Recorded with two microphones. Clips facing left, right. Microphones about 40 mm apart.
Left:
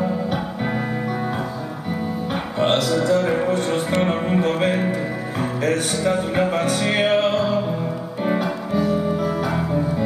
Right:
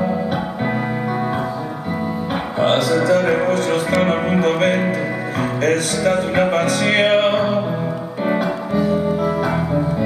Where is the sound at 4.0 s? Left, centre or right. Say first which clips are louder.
Right 3 dB; right.